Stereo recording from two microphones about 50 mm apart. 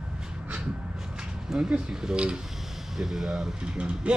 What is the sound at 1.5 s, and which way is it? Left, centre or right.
Speech, centre.